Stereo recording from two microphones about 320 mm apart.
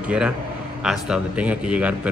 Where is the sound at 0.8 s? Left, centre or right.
Centre.